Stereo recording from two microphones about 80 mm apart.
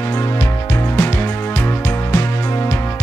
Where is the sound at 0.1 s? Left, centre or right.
Left.